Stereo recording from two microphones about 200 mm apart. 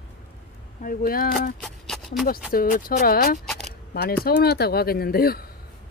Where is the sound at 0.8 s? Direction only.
45° left (ahead or behind).